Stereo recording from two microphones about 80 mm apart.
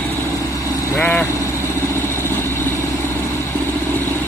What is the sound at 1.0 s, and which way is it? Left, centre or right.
Speech, centre.